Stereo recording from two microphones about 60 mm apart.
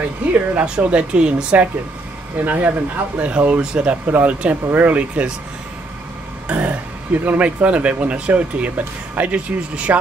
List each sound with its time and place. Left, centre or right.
0.2 s speech: right
6.4 s speech: right